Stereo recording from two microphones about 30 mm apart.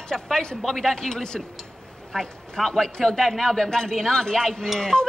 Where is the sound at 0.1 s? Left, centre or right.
Left.